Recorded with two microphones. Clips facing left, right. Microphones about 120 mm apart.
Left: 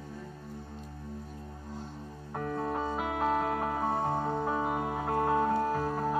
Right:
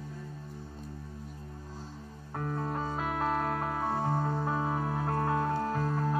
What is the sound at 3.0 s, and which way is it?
Music, 20° left (ahead or behind).